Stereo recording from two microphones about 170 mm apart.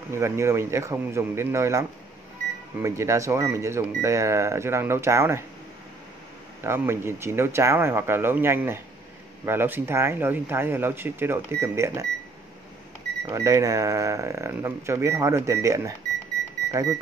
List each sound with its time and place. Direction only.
0.1 s speech: 15° right (ahead or behind)
6.6 s speech: 15° right (ahead or behind)
13.3 s speech: 20° right (ahead or behind)